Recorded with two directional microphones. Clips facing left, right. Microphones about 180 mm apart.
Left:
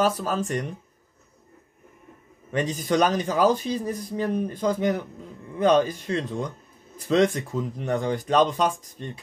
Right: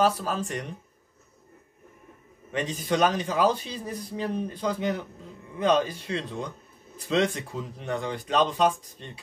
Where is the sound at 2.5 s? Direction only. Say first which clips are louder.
Left 3 dB; 40° left (ahead or behind).